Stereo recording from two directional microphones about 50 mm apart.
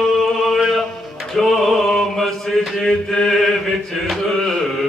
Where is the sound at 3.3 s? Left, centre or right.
Centre.